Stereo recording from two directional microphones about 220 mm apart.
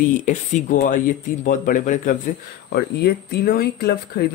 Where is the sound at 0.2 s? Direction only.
35° left (ahead or behind).